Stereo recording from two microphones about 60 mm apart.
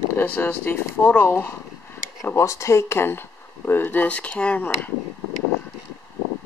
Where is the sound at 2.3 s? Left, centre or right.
Left.